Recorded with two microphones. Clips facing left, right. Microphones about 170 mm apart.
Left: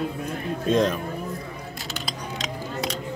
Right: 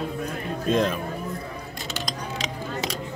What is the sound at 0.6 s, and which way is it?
Speech, centre (ahead or behind).